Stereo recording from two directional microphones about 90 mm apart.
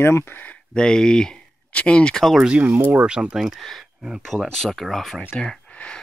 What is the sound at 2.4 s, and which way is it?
Speech, 15° right (ahead or behind).